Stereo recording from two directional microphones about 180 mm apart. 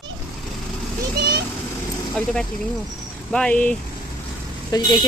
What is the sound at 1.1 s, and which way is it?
Vehicle, 60° right (ahead or behind).